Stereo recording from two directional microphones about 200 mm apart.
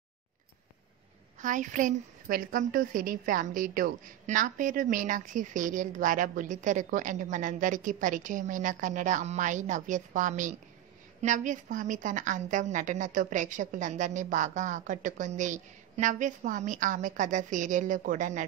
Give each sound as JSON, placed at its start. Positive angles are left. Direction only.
{"t": 1.4, "sound": "a woman's voice", "side_deg": -40}